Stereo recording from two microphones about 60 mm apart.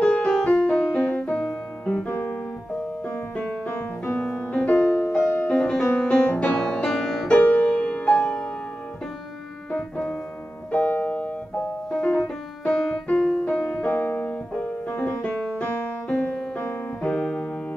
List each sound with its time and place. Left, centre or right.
0.0 s music: left
2.0 s piano: left
3.1 s music: centre
7.2 s music: left
9.7 s keyboard: centre
10.7 s keyboard: left
11.9 s music: centre
13.6 s music: left
14.3 s music: centre
17.1 s piano: centre